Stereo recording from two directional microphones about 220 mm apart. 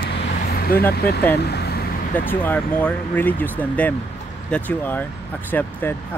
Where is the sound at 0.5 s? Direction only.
45° left (ahead or behind).